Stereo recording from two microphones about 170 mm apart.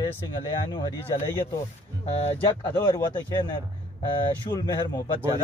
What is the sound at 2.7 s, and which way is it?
Speech, 25° left (ahead or behind).